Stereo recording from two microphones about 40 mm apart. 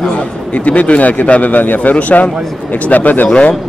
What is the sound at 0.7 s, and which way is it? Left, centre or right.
A man's voice, left.